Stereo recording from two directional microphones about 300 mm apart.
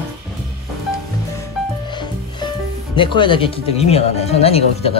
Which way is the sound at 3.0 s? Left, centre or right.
Centre.